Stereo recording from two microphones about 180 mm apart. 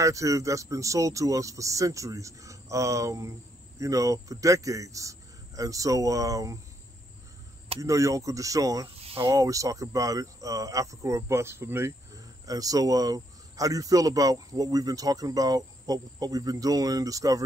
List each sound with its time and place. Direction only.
0.0 s speech: 15° right (ahead or behind)
7.8 s speech: 15° right (ahead or behind)